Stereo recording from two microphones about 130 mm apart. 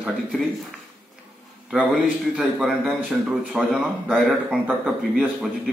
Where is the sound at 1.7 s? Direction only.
Centre (ahead or behind).